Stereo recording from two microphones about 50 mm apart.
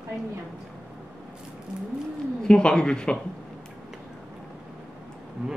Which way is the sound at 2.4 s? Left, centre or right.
Centre.